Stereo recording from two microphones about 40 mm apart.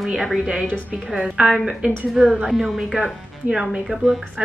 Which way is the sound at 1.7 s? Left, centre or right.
Centre.